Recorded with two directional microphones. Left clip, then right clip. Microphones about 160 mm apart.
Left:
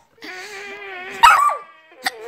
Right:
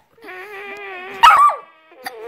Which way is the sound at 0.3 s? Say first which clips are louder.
Right 1 dB; 55° right (ahead or behind).